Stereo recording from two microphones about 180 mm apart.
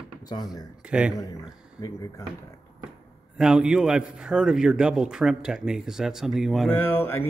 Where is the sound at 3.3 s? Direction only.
5° right (ahead or behind).